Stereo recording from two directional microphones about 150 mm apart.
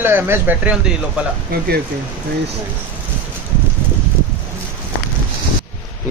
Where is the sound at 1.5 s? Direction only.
90° right.